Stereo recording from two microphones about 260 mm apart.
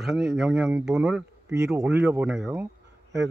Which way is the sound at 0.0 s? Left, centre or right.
Centre.